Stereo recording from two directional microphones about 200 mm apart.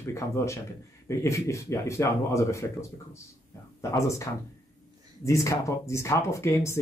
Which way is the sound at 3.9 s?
15° left (ahead or behind).